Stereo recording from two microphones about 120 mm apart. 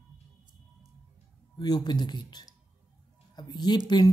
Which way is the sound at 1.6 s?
35° left (ahead or behind).